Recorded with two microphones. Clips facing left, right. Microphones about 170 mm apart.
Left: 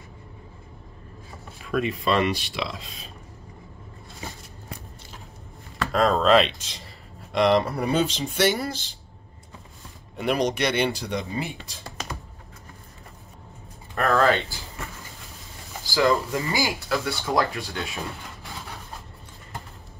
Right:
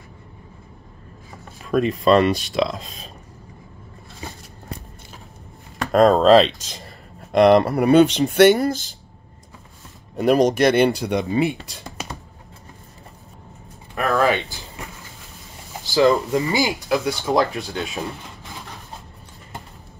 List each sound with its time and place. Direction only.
1.7 s speech: 40° right (ahead or behind)
5.9 s speech: 40° right (ahead or behind)
7.3 s speech: 60° right (ahead or behind)
8.5 s speech: 45° right (ahead or behind)
10.1 s speech: 45° right (ahead or behind); by 11.8 s 65° right (ahead or behind)
13.9 s speech: 15° right (ahead or behind)